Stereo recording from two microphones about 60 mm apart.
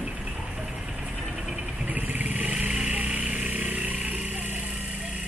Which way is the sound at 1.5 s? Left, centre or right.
Centre.